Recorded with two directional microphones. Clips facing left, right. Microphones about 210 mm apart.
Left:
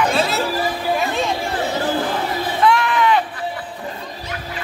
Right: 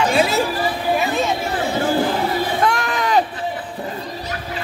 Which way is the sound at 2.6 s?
45° right (ahead or behind).